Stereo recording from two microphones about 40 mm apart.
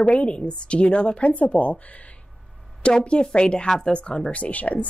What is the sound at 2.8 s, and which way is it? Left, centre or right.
Speech, left.